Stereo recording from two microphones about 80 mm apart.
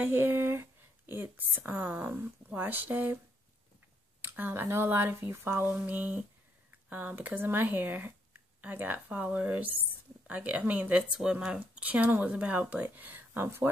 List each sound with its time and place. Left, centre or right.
0.0 s a woman's voice: right
4.2 s speech: right
5.9 s speech: centre